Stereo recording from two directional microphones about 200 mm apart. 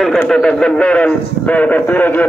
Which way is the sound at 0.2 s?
5° left (ahead or behind).